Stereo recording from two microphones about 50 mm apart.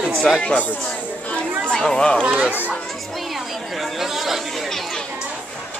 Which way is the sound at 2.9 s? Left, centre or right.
Centre.